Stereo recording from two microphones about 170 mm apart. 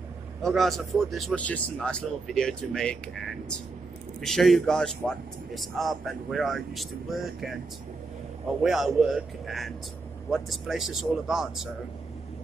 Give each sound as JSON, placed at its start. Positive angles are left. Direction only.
{"t": 0.4, "sound": "a man's voice", "side_deg": 0}
{"t": 8.6, "sound": "a man's voice", "side_deg": 0}